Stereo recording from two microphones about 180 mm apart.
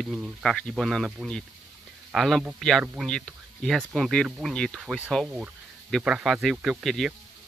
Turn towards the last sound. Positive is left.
turn(degrees=0)  # may be behind; listen again after turning